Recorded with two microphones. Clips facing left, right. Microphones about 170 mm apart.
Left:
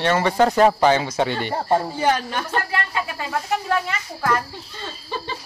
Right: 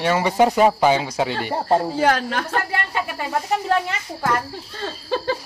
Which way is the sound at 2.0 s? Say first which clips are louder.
Right 2 dB; 90° right.